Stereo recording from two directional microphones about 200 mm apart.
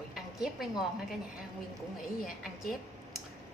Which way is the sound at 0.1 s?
Centre (ahead or behind).